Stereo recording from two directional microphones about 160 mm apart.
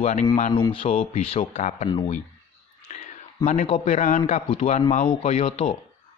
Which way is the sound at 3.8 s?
50° left (ahead or behind).